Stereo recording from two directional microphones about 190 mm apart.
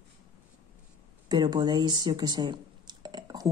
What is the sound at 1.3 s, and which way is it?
Speech, 20° right (ahead or behind).